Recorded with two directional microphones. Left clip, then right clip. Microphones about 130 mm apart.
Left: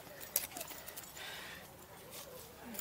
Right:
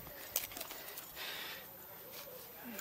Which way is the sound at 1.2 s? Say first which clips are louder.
Right 3 dB; 50° right (ahead or behind).